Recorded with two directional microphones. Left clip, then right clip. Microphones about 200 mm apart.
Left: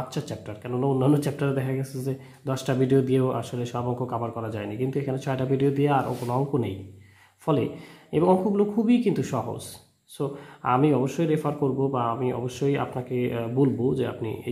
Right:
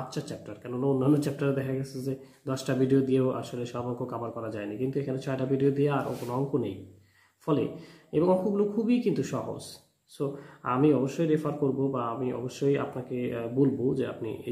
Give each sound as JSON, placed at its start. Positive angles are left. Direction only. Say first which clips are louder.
{"t": 0.1, "sound": "speech", "louder": "left 3 dB", "side_deg": 35}